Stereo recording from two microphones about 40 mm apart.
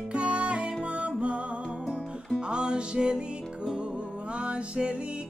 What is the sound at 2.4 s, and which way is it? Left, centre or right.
Music, right.